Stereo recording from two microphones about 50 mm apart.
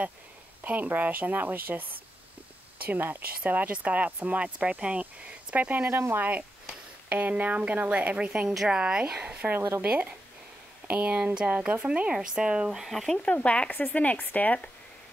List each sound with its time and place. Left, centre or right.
0.7 s speech: right
5.9 s speech: right
7.1 s speech: right; by 12.8 s centre
12.8 s speech: centre
13.2 s speech: left